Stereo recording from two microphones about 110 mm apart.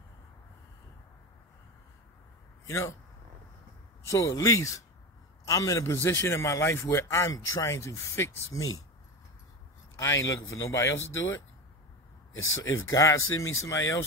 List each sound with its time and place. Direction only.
2.6 s a man's voice: 25° left (ahead or behind)
4.1 s speech: 30° left (ahead or behind)
9.9 s speech: 30° left (ahead or behind)
12.7 s speech: 30° left (ahead or behind)